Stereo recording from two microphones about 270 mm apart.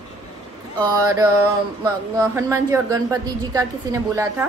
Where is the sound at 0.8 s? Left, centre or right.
Centre.